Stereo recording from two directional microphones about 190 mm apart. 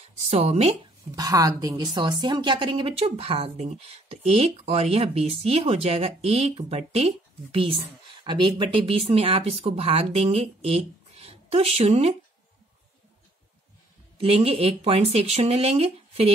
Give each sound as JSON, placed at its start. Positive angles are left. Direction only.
{"t": 0.3, "sound": "a woman's voice", "side_deg": -35}
{"t": 1.1, "sound": "a woman's voice", "side_deg": -20}
{"t": 14.2, "sound": "a woman's voice", "side_deg": -30}